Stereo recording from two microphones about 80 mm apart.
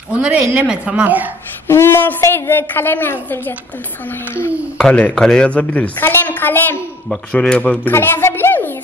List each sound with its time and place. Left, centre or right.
0.1 s a woman's voice: centre
1.7 s a woman's voice: left
4.7 s a woman's voice: centre; by 6.8 s left
7.3 s speech: centre
7.9 s a sound: left